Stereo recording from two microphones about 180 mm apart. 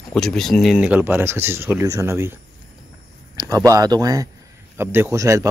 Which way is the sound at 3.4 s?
20° right (ahead or behind).